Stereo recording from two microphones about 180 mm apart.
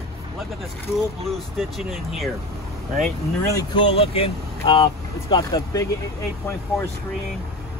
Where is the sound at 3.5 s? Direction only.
30° left (ahead or behind).